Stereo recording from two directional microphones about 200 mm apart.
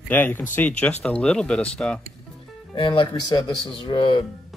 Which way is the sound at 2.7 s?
25° left (ahead or behind).